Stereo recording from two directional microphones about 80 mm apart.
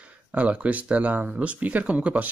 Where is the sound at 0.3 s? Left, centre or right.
Centre.